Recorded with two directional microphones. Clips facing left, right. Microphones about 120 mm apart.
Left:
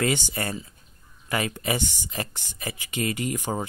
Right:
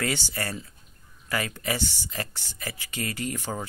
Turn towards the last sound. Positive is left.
turn(degrees=20)  # may be behind; listen again after turning